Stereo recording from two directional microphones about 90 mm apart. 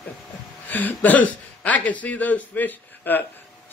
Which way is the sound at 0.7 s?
20° left (ahead or behind).